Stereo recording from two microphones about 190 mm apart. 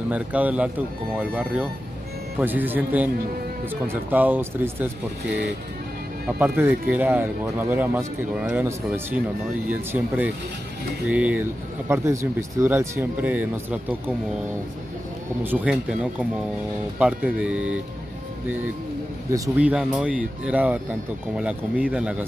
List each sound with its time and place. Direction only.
0.1 s speech: 10° right (ahead or behind)
6.2 s speech: 10° right (ahead or behind)
15.4 s speech: 10° right (ahead or behind)
19.3 s speech: 15° right (ahead or behind)
19.6 s speech: 5° right (ahead or behind)